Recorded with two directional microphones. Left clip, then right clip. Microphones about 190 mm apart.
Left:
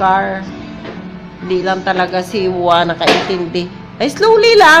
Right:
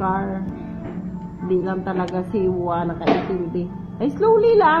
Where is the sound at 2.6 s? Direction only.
30° left (ahead or behind).